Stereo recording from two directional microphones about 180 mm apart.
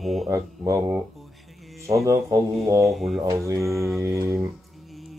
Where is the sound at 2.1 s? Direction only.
15° right (ahead or behind).